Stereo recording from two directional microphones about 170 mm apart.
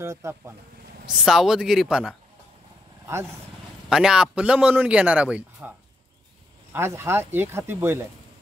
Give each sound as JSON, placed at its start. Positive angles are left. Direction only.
{"t": 0.0, "sound": "a man's voice", "side_deg": -15}
{"t": 1.1, "sound": "speech", "side_deg": 0}
{"t": 3.9, "sound": "a man's voice", "side_deg": -5}
{"t": 6.7, "sound": "a man's voice", "side_deg": -15}